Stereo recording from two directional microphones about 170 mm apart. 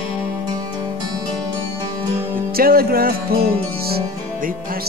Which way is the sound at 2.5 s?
60° right (ahead or behind).